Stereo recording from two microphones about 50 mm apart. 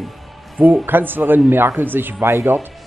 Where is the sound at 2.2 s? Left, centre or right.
Right.